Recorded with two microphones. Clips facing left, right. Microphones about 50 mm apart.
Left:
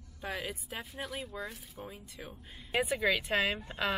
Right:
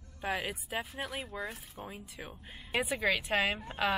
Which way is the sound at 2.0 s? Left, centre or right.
Centre.